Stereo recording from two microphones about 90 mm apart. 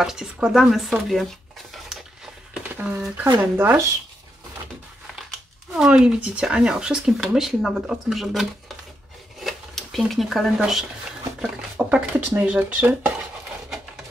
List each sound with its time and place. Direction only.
0.0 s speech: 5° right (ahead or behind)
2.8 s speech: 15° right (ahead or behind)
5.8 s speech: 10° right (ahead or behind)
11.9 s speech: 10° right (ahead or behind)